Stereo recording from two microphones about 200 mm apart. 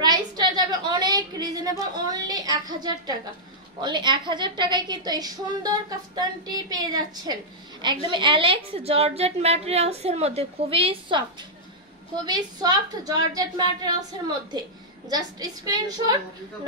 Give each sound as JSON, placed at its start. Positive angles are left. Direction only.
{"t": 0.0, "sound": "a sound", "side_deg": -20}
{"t": 3.8, "sound": "a woman's voice", "side_deg": -20}
{"t": 12.3, "sound": "a woman's voice", "side_deg": -20}